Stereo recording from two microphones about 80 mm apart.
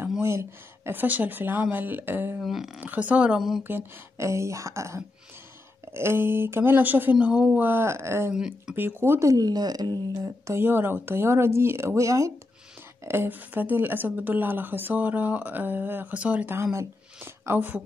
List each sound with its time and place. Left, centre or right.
0.2 s speech: right
2.4 s speech: centre
2.8 s speech: centre
3.3 s speech: centre
3.6 s speech: right
4.3 s speech: right; by 7.4 s centre
7.5 s speech: right
8.3 s speech: centre
8.7 s speech: right
9.3 s speech: right
10.4 s speech: right
13.0 s speech: right
16.7 s speech: right